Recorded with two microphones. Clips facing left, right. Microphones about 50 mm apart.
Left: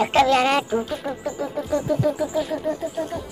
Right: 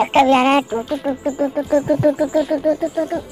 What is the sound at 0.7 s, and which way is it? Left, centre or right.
Speech, centre.